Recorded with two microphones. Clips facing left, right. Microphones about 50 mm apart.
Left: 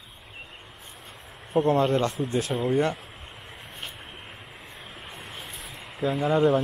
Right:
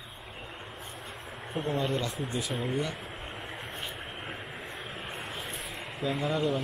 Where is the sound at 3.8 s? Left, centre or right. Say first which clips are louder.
Right 2 dB; centre.